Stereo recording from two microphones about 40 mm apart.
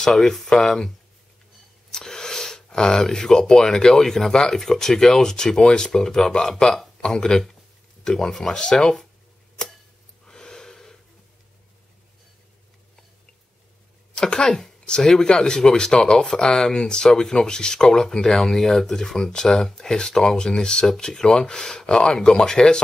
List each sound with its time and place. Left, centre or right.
0.0 s speech: centre
1.9 s a sound: centre
4.0 s speech: centre
10.2 s gasp: centre
14.1 s speech: left